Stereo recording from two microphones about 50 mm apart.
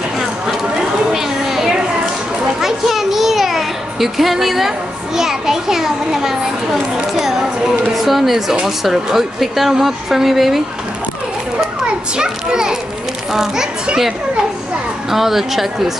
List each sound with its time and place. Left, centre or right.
1.1 s children playing: centre
2.6 s music: centre
7.2 s a sound: centre
7.9 s a woman's voice: centre
12.2 s a child's voice: centre
15.0 s a woman's voice: centre